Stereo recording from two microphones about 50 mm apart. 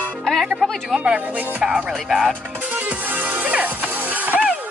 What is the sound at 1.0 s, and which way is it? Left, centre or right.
Speech, right.